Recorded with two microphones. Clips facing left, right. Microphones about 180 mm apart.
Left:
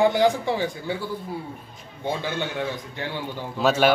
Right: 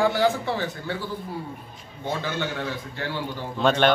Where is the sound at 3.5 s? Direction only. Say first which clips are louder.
Left 1 dB; 5° left (ahead or behind).